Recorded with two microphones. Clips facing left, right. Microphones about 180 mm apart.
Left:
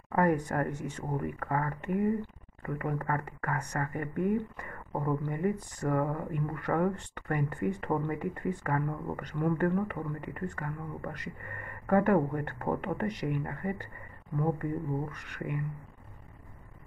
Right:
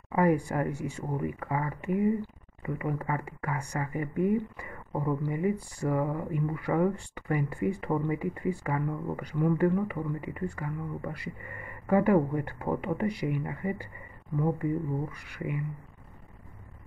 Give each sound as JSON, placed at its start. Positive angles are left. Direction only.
{"t": 0.1, "sound": "speech", "side_deg": -10}